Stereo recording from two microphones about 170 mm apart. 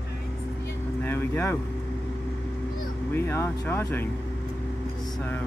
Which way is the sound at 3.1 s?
15° left (ahead or behind).